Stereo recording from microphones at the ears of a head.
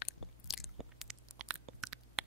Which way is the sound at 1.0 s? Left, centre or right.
Right.